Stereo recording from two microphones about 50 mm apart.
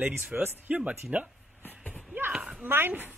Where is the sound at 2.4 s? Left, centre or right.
Centre.